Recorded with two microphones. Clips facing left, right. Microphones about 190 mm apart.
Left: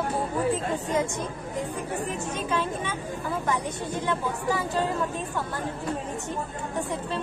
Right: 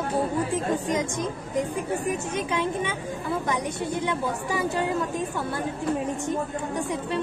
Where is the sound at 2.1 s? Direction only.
15° right (ahead or behind).